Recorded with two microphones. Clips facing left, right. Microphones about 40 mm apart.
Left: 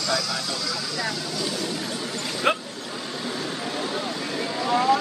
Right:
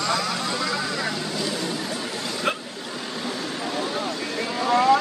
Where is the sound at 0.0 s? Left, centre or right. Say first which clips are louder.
Right 2 dB; right.